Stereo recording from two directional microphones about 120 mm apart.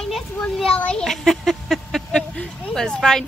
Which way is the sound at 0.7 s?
10° left (ahead or behind).